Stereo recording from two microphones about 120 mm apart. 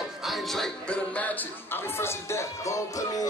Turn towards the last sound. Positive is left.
turn(degrees=25)  # may be behind; listen again after turning